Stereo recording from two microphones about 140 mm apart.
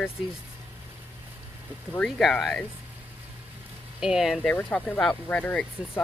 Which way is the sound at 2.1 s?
Centre (ahead or behind).